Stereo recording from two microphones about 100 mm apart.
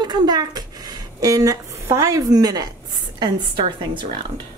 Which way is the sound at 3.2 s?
50° right (ahead or behind).